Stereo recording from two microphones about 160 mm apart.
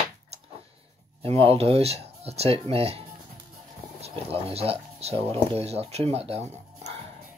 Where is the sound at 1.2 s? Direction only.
40° right (ahead or behind).